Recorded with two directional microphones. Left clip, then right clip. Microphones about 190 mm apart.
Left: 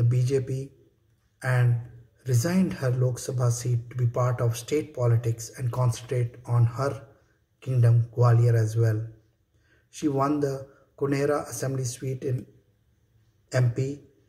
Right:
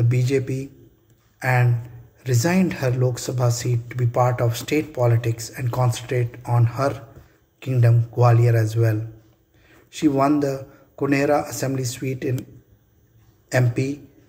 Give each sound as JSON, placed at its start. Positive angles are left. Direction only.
{"t": 0.0, "sound": "speech", "side_deg": 15}
{"t": 1.4, "sound": "speech", "side_deg": 15}
{"t": 9.9, "sound": "speech", "side_deg": 15}
{"t": 13.5, "sound": "speech", "side_deg": 15}